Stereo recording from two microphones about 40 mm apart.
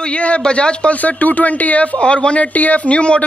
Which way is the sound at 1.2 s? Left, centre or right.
Left.